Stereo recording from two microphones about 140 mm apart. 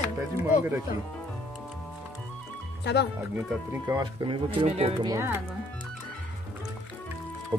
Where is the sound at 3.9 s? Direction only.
30° right (ahead or behind).